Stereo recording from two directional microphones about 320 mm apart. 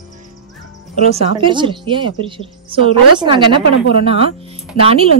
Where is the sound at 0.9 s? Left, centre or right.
Centre.